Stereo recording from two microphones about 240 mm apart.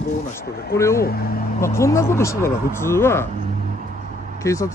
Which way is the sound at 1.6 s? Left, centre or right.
Centre.